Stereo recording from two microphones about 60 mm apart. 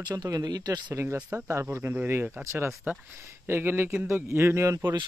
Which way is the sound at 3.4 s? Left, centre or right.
Right.